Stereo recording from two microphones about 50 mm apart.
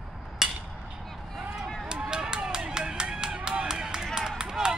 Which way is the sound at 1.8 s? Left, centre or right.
Centre.